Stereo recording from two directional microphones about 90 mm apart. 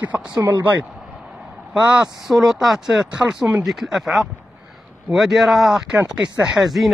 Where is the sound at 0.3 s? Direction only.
40° right (ahead or behind).